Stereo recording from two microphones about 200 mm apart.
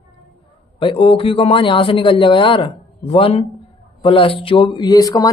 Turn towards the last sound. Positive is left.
turn(degrees=20)  # may be behind; listen again after turning